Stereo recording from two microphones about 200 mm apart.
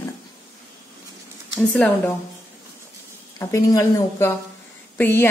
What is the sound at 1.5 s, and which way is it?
Speech, 5° left (ahead or behind).